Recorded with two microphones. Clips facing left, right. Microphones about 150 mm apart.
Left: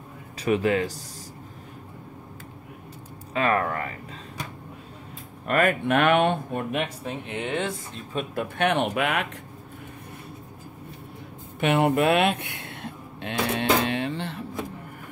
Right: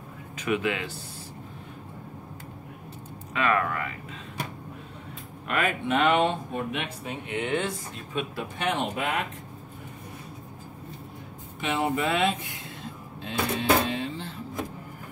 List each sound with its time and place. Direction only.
0.4 s speech: 35° left (ahead or behind)
3.3 s speech: 35° left (ahead or behind)
5.5 s speech: 50° left (ahead or behind)
7.1 s speech: 30° left (ahead or behind)
8.1 s speech: 40° left (ahead or behind)
8.5 s speech: 65° left (ahead or behind)
11.6 s speech: 65° left (ahead or behind)
13.8 s music: 70° left (ahead or behind)